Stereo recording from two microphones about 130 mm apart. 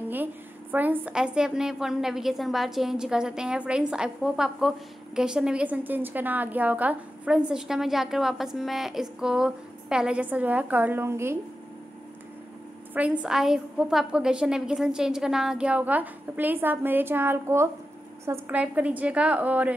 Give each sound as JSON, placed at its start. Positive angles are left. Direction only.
{"t": 0.1, "sound": "a woman's voice", "side_deg": -15}
{"t": 12.9, "sound": "a woman's voice", "side_deg": -10}
{"t": 18.6, "sound": "a woman's voice", "side_deg": -10}